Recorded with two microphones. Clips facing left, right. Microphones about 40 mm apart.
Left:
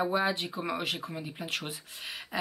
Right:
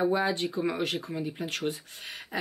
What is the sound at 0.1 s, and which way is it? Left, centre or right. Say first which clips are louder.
Speech: right 2 dB; centre.